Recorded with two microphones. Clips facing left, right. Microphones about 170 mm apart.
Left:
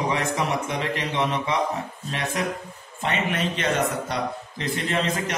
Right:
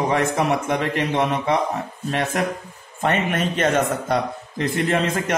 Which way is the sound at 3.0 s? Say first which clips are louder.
Right 4 dB; 50° right (ahead or behind).